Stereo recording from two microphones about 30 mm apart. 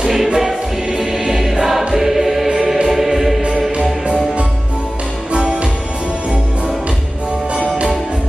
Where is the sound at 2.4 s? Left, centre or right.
Centre.